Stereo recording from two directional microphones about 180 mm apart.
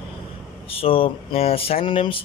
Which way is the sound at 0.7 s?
30° left (ahead or behind).